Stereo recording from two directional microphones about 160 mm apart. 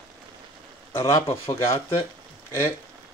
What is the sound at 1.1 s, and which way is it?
Speech, 20° left (ahead or behind).